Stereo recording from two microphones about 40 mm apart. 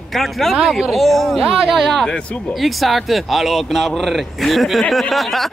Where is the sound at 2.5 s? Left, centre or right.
Centre.